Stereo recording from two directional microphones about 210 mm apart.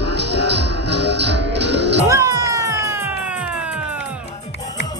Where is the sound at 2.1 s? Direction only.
15° right (ahead or behind).